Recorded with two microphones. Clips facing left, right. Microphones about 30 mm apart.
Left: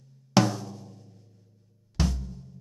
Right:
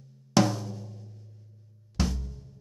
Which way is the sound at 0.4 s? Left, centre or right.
Centre.